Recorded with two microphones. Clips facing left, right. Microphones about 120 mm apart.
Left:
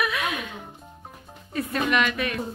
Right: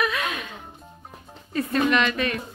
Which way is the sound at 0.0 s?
10° left (ahead or behind).